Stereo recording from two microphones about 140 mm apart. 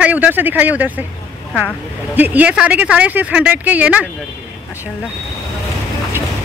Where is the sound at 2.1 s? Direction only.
10° right (ahead or behind).